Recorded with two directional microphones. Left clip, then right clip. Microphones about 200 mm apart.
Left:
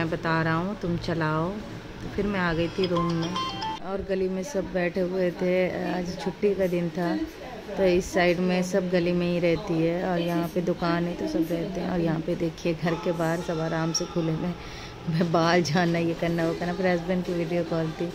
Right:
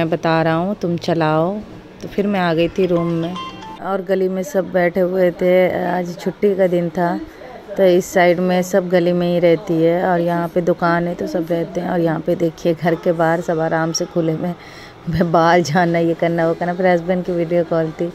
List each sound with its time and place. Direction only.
0.0 s speech: 30° right (ahead or behind)
3.8 s a woman's voice: 25° right (ahead or behind)
15.1 s a woman's voice: 25° right (ahead or behind)